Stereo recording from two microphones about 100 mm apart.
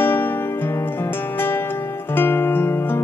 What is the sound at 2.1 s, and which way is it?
Music, 20° left (ahead or behind).